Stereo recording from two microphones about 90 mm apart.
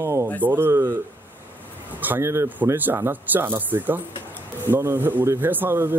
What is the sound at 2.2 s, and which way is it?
Speech, 30° right (ahead or behind).